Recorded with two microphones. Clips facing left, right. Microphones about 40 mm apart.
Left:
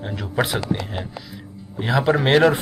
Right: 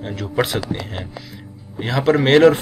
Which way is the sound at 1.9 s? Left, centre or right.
Centre.